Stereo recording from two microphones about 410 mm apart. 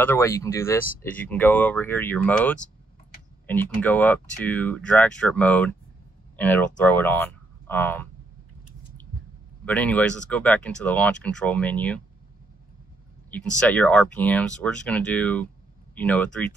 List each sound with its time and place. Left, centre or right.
0.0 s speech: centre
9.7 s speech: centre
13.5 s speech: centre